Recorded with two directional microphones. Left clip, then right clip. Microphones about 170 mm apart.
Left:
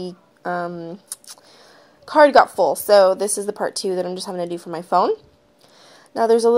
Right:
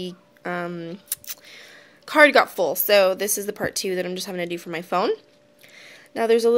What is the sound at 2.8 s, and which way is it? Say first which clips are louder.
Speech: left 4 dB; 10° left (ahead or behind).